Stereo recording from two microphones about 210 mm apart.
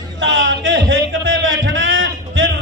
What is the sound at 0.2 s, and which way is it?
Music, 65° right (ahead or behind).